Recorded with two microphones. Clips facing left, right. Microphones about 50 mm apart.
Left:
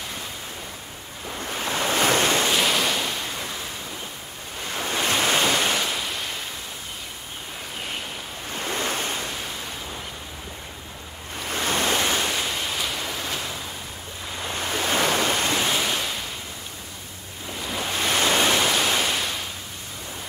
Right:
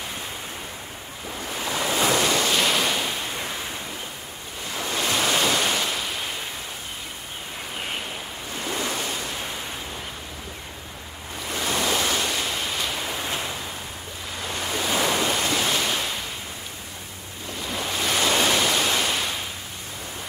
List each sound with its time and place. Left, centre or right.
1.5 s waves: left
2.5 s waves: centre
4.7 s waves: left
5.2 s waves: centre
8.6 s waves: left
11.5 s waves: left
12.0 s ocean: centre
14.5 s waves: left
15.6 s waves: centre
17.6 s waves: centre